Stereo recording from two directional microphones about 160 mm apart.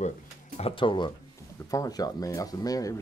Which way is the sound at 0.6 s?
30° left (ahead or behind).